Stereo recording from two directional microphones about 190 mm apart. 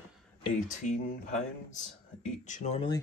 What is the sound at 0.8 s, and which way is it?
Speech, 40° left (ahead or behind).